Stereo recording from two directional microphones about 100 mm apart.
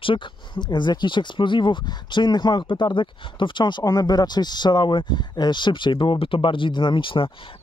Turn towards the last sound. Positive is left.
turn(degrees=55)  # may be behind; listen again after turning